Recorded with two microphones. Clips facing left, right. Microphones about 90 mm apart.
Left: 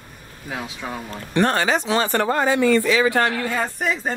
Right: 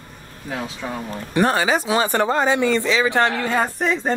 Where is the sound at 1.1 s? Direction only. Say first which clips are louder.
Right 1 dB; 10° right (ahead or behind).